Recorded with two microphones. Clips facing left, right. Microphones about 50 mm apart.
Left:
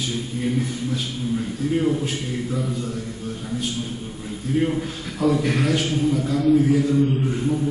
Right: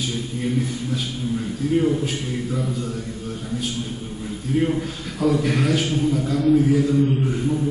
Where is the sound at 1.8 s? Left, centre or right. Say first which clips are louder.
Right 2 dB; centre.